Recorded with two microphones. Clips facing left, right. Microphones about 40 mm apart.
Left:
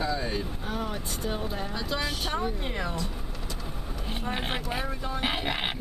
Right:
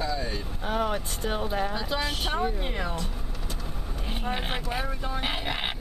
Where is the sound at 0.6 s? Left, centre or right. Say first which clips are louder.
Right 5 dB; right.